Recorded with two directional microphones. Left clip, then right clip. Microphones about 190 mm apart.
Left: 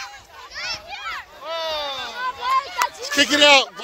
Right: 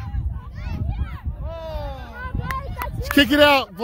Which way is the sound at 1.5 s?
30° right (ahead or behind).